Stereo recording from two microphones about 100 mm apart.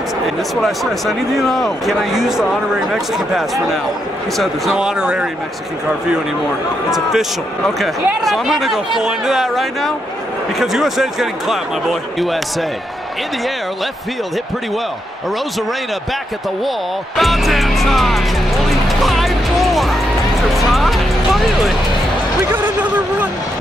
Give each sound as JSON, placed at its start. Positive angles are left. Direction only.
{"t": 0.6, "sound": "a man's voice", "side_deg": 0}
{"t": 6.9, "sound": "speech", "side_deg": -5}
{"t": 17.2, "sound": "music", "side_deg": 0}
{"t": 22.5, "sound": "a sound", "side_deg": -20}